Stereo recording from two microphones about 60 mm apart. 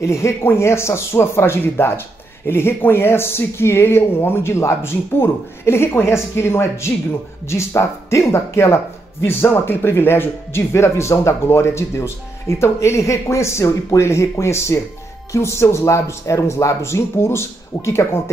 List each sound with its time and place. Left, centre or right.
0.0 s speech: left
9.2 s speech: left